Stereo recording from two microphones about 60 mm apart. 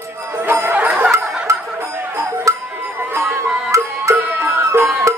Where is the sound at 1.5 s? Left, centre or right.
Right.